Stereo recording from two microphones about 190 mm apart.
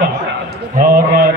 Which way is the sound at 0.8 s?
45° right (ahead or behind).